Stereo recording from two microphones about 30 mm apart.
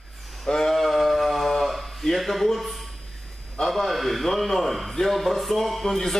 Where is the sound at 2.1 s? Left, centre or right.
Centre.